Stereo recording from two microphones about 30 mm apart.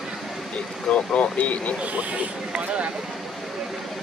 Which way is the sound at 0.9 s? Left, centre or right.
Left.